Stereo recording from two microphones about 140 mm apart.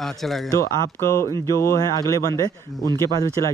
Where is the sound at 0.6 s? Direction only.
20° left (ahead or behind).